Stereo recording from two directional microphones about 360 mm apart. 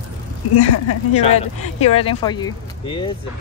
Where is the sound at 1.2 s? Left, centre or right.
Centre.